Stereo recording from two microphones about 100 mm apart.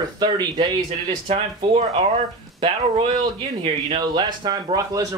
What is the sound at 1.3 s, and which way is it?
Speech, 85° right.